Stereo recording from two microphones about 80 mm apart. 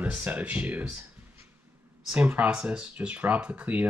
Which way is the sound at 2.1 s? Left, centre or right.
Centre.